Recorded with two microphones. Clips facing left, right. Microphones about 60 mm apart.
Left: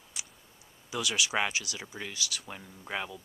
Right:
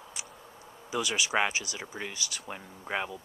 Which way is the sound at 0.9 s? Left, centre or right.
Centre.